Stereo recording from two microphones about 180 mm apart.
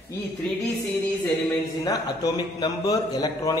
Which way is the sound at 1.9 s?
20° left (ahead or behind).